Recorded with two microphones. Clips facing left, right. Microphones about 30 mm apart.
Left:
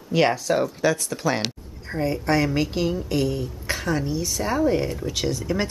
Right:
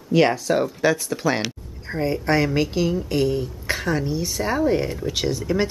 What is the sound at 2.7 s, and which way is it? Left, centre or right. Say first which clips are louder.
Speech: right 2 dB; centre.